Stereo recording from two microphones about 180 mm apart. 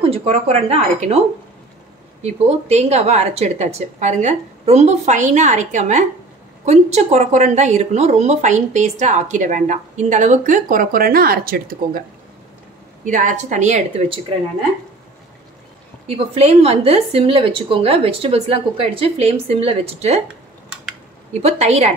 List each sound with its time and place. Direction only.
0.0 s a woman's voice: 35° right (ahead or behind)
2.2 s a woman's voice: 35° right (ahead or behind); by 12.0 s 55° right (ahead or behind)
13.0 s a woman's voice: 45° right (ahead or behind)
16.3 s a woman's voice: 35° right (ahead or behind)
21.3 s a woman's voice: 35° right (ahead or behind)